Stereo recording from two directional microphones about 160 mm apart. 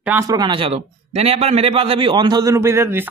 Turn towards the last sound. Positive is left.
turn(degrees=-15)  # may be behind; listen again after turning